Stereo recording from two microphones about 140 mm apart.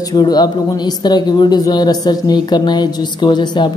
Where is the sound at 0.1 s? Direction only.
30° left (ahead or behind).